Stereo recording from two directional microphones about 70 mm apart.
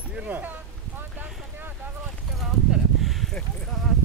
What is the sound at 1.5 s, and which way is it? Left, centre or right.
Boat, right.